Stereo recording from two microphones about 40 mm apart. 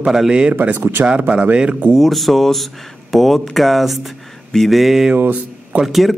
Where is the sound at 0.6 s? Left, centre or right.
Right.